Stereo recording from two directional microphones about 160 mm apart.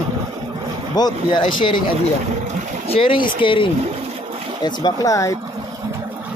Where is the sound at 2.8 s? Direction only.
35° left (ahead or behind).